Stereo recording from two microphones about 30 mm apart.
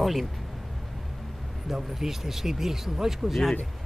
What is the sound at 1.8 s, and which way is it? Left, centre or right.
Speech, centre.